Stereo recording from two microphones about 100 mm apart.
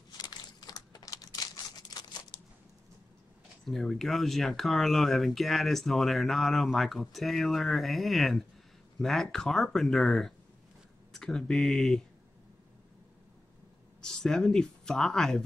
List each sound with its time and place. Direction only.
0.2 s crumpling: 40° left (ahead or behind)
3.6 s speech: 5° left (ahead or behind)
14.0 s speech: 5° left (ahead or behind)